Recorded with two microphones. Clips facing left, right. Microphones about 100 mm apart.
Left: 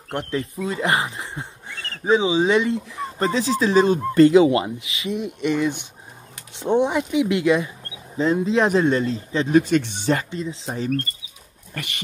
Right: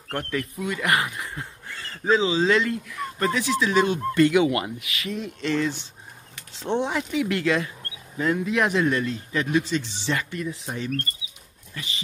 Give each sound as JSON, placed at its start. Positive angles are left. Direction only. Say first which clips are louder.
{"t": 0.1, "sound": "speech", "louder": "left 3 dB", "side_deg": 25}
{"t": 9.6, "sound": "speech", "louder": "left 7 dB", "side_deg": 55}
{"t": 10.3, "sound": "speech", "louder": "left 2 dB", "side_deg": 25}
{"t": 11.7, "sound": "dog", "louder": "left 3 dB", "side_deg": 60}